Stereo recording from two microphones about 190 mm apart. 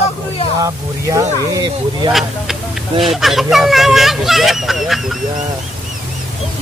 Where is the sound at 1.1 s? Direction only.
20° right (ahead or behind).